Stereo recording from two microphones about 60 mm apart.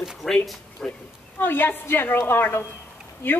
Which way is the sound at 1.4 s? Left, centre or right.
Left.